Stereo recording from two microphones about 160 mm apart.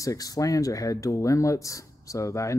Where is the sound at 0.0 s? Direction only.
20° left (ahead or behind).